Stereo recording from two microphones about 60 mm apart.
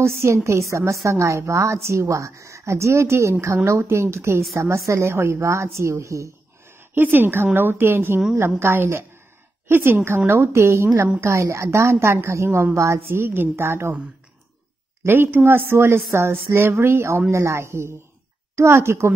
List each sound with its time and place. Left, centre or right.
0.0 s a woman's voice: right
7.0 s a woman's voice: right
15.0 s a woman's voice: right